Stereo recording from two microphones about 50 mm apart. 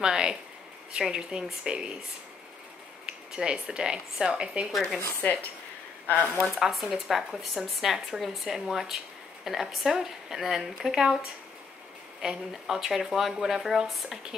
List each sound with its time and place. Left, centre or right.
0.0 s speech: centre
3.1 s a sound: centre
3.5 s speech: centre
4.7 s speech: centre
5.2 s a woman's voice: left
6.7 s speech: centre
12.2 s speech: centre